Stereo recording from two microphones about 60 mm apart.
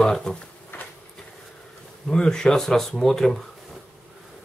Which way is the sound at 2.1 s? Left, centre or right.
Centre.